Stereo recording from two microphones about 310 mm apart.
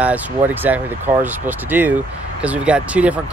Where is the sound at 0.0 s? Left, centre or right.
Centre.